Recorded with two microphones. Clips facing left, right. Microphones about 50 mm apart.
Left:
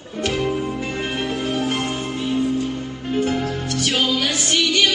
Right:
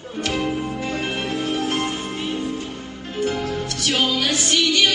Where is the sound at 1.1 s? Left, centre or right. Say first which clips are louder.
Left 1 dB; left.